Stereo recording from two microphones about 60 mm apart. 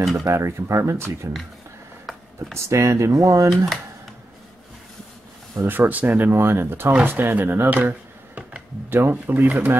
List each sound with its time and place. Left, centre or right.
0.2 s speech: right
2.3 s speech: right
3.4 s speech: centre
5.7 s speech: right
6.3 s speech: right
8.9 s speech: right